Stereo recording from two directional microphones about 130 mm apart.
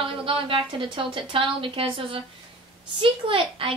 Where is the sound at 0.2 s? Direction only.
45° right (ahead or behind).